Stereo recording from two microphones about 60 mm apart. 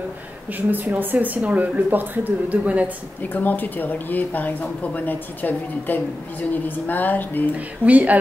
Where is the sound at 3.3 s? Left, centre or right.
Left.